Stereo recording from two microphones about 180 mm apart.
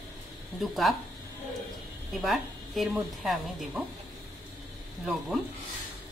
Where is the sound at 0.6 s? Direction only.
Centre (ahead or behind).